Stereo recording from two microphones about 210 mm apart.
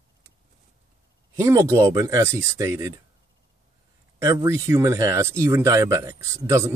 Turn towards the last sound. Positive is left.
turn(degrees=-10)  # may be behind; listen again after turning